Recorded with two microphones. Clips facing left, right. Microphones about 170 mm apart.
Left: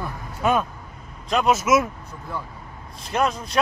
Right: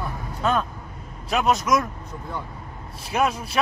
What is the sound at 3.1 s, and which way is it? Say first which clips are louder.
Speech: even; 5° right (ahead or behind).